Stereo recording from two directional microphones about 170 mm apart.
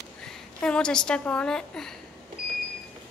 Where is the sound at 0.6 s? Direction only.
5° left (ahead or behind).